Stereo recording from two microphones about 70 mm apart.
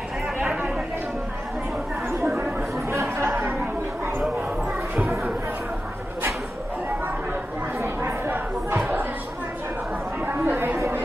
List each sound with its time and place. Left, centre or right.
2.2 s chatter: right
2.9 s chatter: right
7.8 s chatter: right
10.2 s chatter: right